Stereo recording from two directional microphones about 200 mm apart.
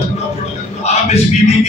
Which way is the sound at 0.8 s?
35° left (ahead or behind).